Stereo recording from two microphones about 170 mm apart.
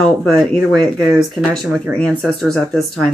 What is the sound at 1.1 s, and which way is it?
Speech, centre (ahead or behind).